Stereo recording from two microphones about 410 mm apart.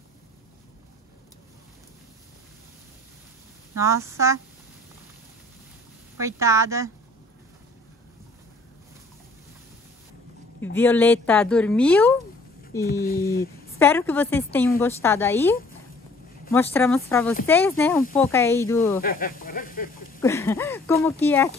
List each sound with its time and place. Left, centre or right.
3.7 s speech: centre
6.1 s speech: centre
10.6 s speech: centre
13.0 s speech: left
13.7 s speech: centre
16.5 s speech: centre
18.9 s speech: left
20.2 s speech: centre